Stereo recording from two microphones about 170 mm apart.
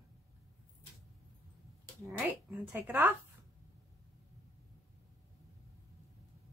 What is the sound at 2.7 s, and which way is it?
Speech, 10° right (ahead or behind).